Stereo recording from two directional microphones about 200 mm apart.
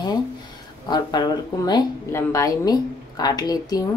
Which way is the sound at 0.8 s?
20° left (ahead or behind).